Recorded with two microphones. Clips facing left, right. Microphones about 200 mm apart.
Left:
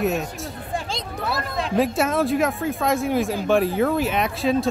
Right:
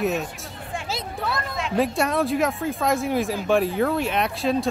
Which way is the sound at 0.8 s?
5° right (ahead or behind).